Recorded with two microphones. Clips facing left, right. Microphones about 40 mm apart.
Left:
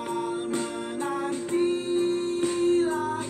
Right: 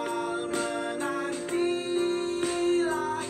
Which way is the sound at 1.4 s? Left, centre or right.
Right.